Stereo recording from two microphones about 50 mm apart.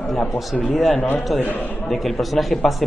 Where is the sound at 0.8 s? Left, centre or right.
Left.